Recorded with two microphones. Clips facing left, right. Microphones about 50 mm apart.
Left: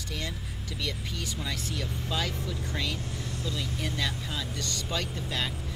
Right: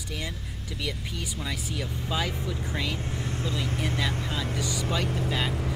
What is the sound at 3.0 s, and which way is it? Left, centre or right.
Speech, right.